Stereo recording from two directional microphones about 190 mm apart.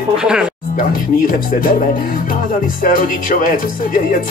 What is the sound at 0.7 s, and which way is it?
Speech, 45° left (ahead or behind).